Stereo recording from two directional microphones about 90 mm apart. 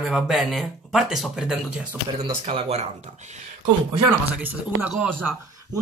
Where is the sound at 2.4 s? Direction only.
90° right.